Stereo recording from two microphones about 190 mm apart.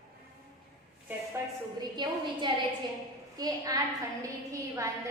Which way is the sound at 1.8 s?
25° right (ahead or behind).